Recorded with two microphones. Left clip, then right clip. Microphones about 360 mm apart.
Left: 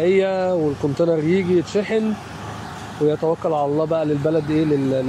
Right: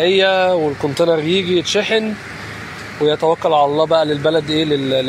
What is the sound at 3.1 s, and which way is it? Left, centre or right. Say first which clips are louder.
Speech: right 6 dB; right.